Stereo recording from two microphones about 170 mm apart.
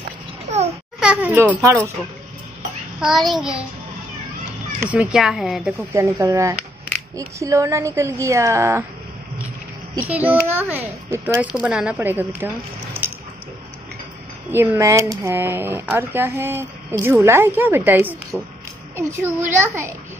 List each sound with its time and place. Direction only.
0.9 s a child's voice: 5° right (ahead or behind)
3.0 s speech: centre (ahead or behind)
4.7 s speech: 10° right (ahead or behind)
5.9 s speech: 15° right (ahead or behind)
9.9 s speech: 10° right (ahead or behind)
14.5 s speech: 15° right (ahead or behind)
18.3 s speech: centre (ahead or behind)
18.9 s speech: 15° right (ahead or behind)